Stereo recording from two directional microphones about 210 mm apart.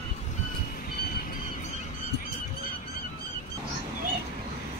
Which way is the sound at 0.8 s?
45° left (ahead or behind).